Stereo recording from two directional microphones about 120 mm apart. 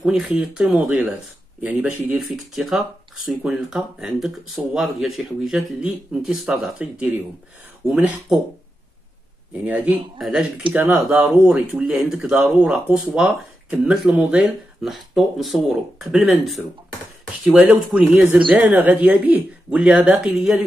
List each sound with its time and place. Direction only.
0.0 s speech: 5° right (ahead or behind)
9.5 s speech: 15° right (ahead or behind)
10.1 s speech: centre (ahead or behind)
10.7 s speech: 15° right (ahead or behind)
11.0 s speech: 5° right (ahead or behind)